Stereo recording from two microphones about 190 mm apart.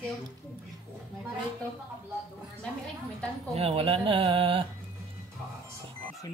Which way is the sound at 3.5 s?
30° right (ahead or behind).